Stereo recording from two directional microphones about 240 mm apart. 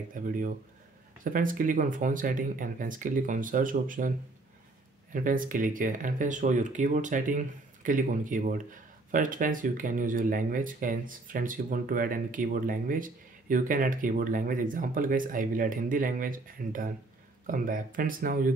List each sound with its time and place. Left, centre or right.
0.1 s speech: right
5.1 s speech: right